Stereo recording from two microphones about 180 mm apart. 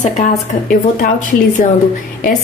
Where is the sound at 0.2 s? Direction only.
50° left (ahead or behind).